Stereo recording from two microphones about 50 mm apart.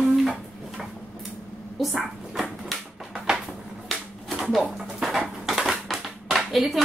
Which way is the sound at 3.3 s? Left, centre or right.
Centre.